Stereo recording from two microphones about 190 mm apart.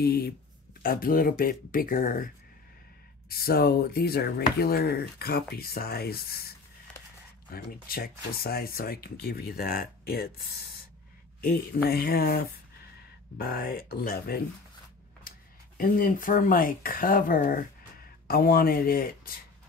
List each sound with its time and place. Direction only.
0.0 s speech: 55° left (ahead or behind)
3.3 s speech: 55° left (ahead or behind)
15.8 s speech: 45° left (ahead or behind)